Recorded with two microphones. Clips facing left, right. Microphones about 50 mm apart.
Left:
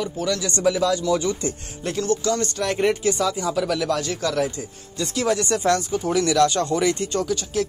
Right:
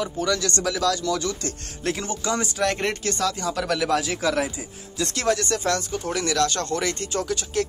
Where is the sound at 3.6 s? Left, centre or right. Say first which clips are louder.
Even; centre.